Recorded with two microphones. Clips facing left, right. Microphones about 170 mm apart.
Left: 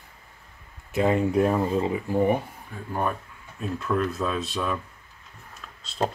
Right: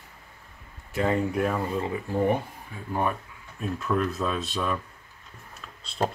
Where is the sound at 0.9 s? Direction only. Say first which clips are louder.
Left 3 dB; 20° left (ahead or behind).